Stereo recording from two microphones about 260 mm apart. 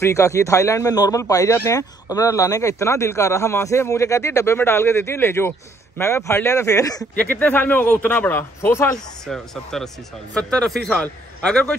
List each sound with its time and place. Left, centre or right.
0.0 s a man's voice: centre